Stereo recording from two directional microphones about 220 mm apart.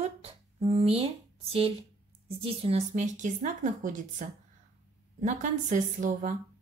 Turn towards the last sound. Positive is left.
turn(degrees=-35)  # may be behind; listen again after turning